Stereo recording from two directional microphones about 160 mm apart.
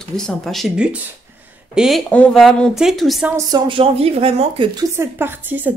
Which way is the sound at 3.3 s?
30° right (ahead or behind).